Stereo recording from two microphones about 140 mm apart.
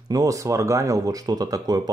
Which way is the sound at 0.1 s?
25° right (ahead or behind).